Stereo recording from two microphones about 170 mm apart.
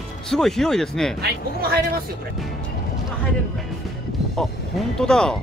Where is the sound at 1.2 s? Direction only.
70° right (ahead or behind).